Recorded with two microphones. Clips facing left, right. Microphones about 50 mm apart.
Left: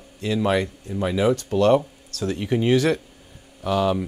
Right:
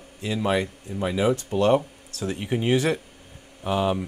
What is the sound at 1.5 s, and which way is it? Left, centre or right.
A man's voice, right.